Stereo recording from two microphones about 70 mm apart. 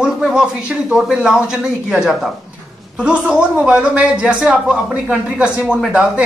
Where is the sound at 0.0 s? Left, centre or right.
Centre.